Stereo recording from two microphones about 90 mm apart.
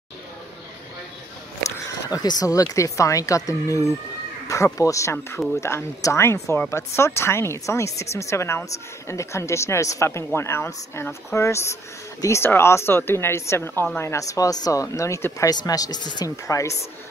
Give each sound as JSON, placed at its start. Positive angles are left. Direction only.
{"t": 2.0, "sound": "a woman's voice", "side_deg": 45}
{"t": 16.4, "sound": "speech", "side_deg": 35}